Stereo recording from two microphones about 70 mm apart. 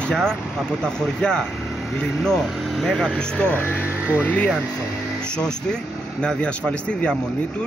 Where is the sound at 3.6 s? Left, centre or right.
Left.